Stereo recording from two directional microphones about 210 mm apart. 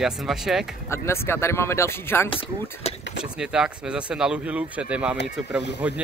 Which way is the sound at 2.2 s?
25° left (ahead or behind).